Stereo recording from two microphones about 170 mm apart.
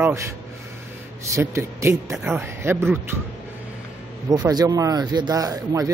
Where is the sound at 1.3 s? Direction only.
15° right (ahead or behind).